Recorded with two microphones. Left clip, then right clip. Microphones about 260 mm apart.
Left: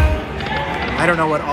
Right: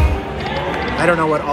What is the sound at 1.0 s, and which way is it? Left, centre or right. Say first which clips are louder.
Speech: right 1 dB; centre.